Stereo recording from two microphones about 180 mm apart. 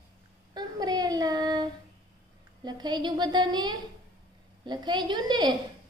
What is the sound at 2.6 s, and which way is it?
A woman's voice, 25° right (ahead or behind).